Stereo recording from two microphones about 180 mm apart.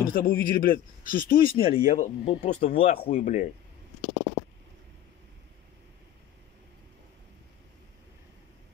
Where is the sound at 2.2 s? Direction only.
35° left (ahead or behind).